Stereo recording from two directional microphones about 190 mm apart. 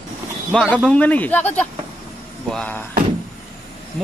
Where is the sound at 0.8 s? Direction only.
5° left (ahead or behind).